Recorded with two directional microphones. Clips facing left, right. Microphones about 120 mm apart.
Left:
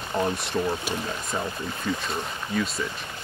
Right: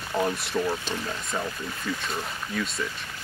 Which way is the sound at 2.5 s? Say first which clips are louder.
Left 4 dB; centre (ahead or behind).